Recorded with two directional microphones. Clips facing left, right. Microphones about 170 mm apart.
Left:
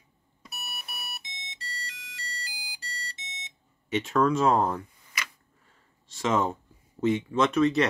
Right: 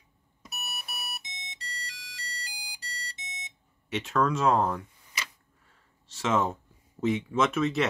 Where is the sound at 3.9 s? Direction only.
Centre (ahead or behind).